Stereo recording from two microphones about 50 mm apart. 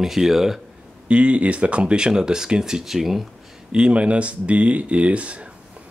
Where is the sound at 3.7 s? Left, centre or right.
Right.